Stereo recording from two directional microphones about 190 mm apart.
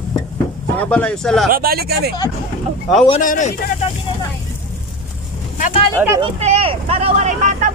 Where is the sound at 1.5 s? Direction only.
50° right (ahead or behind).